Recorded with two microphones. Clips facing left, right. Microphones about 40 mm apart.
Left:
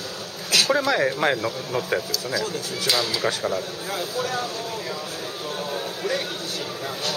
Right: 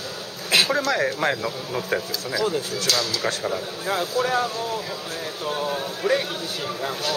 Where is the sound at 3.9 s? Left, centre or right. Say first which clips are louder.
Right 6 dB; centre.